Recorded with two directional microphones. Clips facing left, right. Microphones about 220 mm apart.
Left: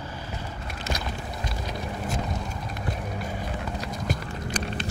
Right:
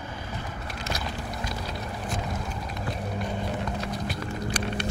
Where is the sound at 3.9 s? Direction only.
45° left (ahead or behind).